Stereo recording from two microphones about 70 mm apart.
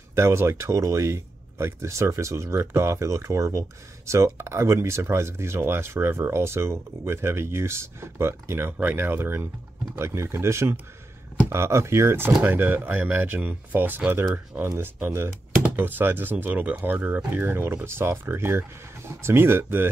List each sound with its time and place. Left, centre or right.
0.1 s speech: right
12.4 s speech: right